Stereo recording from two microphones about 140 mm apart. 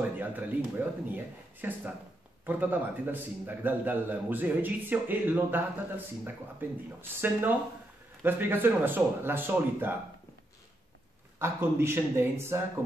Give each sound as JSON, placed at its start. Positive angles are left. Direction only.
{"t": 0.0, "sound": "a sound", "side_deg": -10}
{"t": 0.7, "sound": "a man's voice", "side_deg": -15}
{"t": 11.3, "sound": "a man's voice", "side_deg": -20}